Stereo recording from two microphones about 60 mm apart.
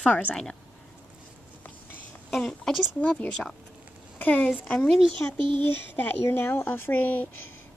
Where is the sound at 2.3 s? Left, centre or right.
Centre.